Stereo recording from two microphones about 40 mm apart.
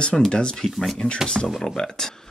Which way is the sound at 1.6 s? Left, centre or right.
Centre.